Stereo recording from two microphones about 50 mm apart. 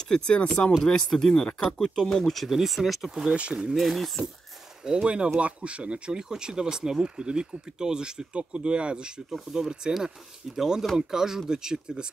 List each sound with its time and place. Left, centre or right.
0.3 s speech: left; by 3.1 s centre
3.3 s speech: right
3.7 s speech: centre
4.8 s speech: centre